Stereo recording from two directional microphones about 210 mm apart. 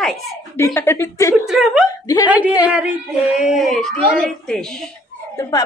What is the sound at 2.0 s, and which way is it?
Speech, 15° left (ahead or behind).